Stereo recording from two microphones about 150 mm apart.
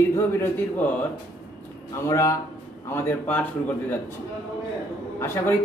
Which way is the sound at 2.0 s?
20° left (ahead or behind).